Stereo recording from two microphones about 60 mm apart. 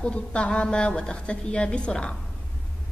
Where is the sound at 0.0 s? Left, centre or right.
Centre.